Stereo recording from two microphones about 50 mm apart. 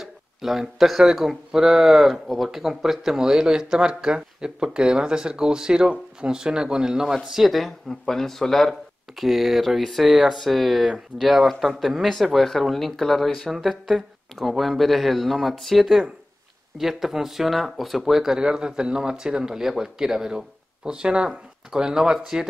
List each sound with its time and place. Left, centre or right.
0.0 s speech: centre
7.2 s speech: centre